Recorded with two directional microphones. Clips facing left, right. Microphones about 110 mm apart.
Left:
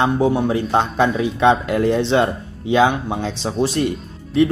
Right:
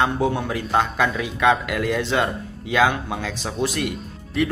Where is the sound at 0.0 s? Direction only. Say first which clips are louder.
Left 4 dB; 25° left (ahead or behind).